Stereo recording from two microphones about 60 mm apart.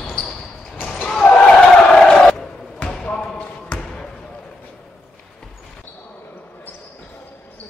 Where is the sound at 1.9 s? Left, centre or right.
Centre.